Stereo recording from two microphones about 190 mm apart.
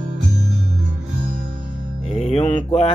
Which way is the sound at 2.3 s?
35° left (ahead or behind).